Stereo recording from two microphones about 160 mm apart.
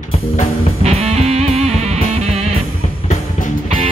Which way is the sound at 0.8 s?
40° right (ahead or behind).